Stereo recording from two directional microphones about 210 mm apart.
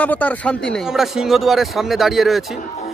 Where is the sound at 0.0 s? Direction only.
5° left (ahead or behind).